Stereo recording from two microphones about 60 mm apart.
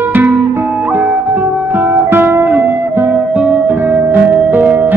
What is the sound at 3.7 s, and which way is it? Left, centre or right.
Music, right.